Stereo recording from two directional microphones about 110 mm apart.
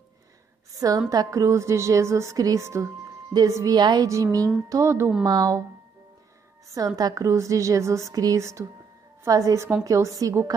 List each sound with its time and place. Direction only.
0.7 s a woman's voice: 35° right (ahead or behind)
5.2 s a woman's voice: 35° right (ahead or behind)
7.0 s a woman's voice: 35° right (ahead or behind)